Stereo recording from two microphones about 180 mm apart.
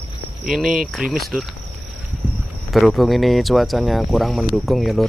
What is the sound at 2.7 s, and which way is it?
Speech, centre (ahead or behind).